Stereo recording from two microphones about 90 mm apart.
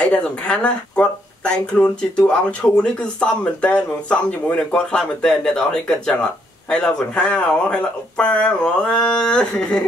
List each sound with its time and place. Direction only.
0.0 s speech: 10° left (ahead or behind)